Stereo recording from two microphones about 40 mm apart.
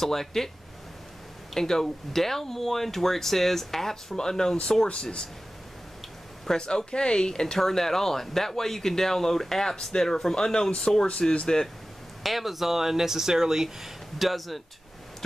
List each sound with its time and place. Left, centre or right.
0.0 s speech: centre
1.5 s speech: centre
6.4 s speech: centre
12.2 s speech: centre